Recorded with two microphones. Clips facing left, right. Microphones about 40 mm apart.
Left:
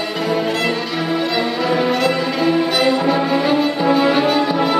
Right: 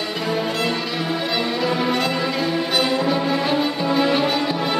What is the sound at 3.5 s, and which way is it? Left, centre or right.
Music, centre.